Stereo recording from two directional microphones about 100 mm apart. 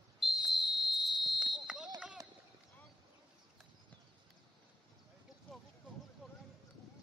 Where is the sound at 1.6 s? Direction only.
10° right (ahead or behind).